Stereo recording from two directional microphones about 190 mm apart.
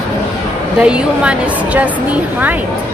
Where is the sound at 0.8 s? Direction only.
5° right (ahead or behind).